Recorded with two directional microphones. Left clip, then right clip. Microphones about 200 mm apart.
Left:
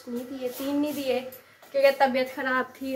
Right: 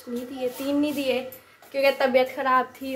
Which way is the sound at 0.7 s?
5° right (ahead or behind).